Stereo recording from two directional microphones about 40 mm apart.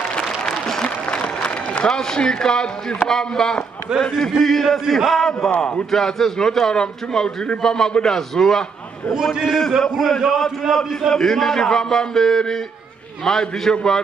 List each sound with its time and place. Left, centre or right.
0.5 s applause: centre
0.8 s applause: left
1.9 s a man's voice: centre
9.2 s a man's voice: centre
9.5 s a man's voice: centre